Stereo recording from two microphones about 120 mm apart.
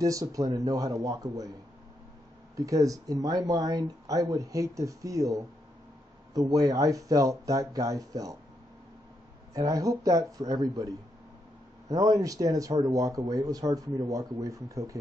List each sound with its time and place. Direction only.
0.0 s speech: 30° right (ahead or behind)
2.5 s speech: 25° right (ahead or behind)
9.5 s speech: 30° right (ahead or behind)